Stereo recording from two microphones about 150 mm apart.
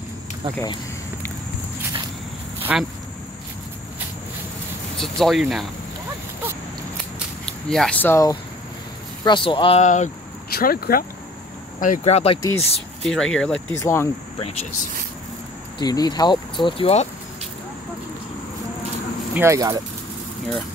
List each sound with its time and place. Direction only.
2.7 s speech: 5° right (ahead or behind)
4.9 s speech: centre (ahead or behind)
7.4 s speech: 5° left (ahead or behind)
8.1 s speech: 20° left (ahead or behind)
9.2 s speech: 30° left (ahead or behind)
9.8 s speech: 50° left (ahead or behind)
10.5 s speech: 85° left
11.8 s speech: 55° left (ahead or behind)
12.4 s speech: 20° left (ahead or behind)
13.0 s speech: 5° left (ahead or behind)
13.7 s speech: 20° left (ahead or behind)
14.4 s speech: 45° left (ahead or behind)
15.8 s speech: 25° left (ahead or behind); by 17.1 s 40° left (ahead or behind)
19.3 s speech: 20° right (ahead or behind)